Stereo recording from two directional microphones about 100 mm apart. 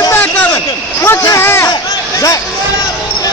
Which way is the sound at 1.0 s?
30° left (ahead or behind).